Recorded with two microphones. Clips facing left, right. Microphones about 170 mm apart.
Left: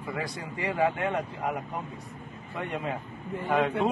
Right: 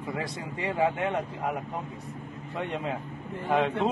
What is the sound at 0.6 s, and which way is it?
Speech, 20° right (ahead or behind).